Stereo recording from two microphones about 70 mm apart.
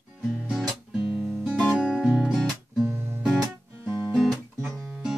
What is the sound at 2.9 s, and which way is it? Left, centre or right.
Music, right.